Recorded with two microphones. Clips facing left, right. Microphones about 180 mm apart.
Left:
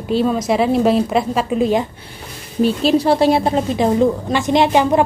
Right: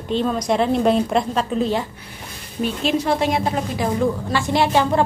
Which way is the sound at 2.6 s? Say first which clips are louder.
Left 6 dB; 35° left (ahead or behind).